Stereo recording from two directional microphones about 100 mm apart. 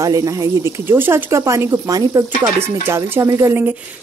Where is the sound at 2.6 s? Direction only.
25° right (ahead or behind).